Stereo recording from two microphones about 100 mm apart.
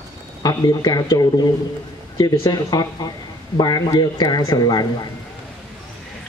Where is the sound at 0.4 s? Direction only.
40° left (ahead or behind).